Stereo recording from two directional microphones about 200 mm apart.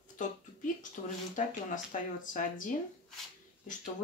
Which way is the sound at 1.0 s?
40° left (ahead or behind).